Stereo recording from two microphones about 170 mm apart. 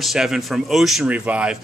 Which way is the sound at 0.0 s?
Centre (ahead or behind).